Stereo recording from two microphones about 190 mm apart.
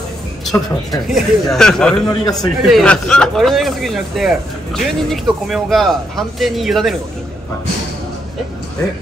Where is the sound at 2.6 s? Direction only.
Centre (ahead or behind).